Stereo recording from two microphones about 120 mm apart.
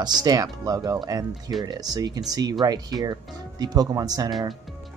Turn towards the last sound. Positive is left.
turn(degrees=-30)  # may be behind; listen again after turning